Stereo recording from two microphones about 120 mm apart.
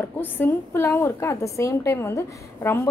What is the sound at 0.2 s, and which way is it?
A woman's voice, 20° left (ahead or behind).